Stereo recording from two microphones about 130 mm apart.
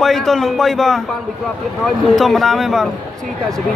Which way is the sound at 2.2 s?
Centre (ahead or behind).